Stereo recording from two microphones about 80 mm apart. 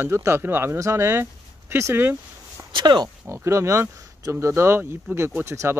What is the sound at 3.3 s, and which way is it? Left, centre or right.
Speech, right.